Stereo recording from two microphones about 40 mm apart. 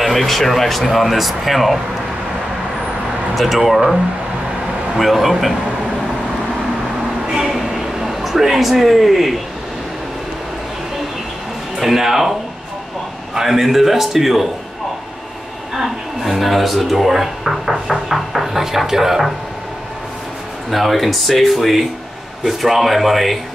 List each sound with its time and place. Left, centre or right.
0.0 s speech: centre
3.3 s speech: centre
7.2 s a sound: centre
7.5 s a sound: centre
11.8 s a man's voice: centre
15.7 s speech: centre
20.7 s speech: centre